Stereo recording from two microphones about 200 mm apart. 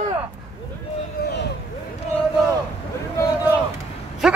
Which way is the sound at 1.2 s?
50° left (ahead or behind).